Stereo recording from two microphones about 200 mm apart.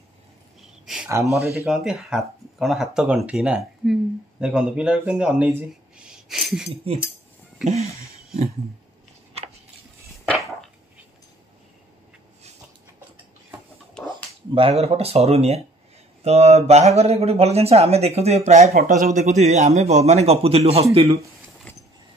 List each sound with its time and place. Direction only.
0.6 s a sound: 5° right (ahead or behind)
1.7 s speech: centre (ahead or behind)
6.7 s speech: 30° right (ahead or behind)
14.5 s speech: 30° right (ahead or behind)
18.7 s speech: 45° right (ahead or behind); by 21.2 s 30° right (ahead or behind)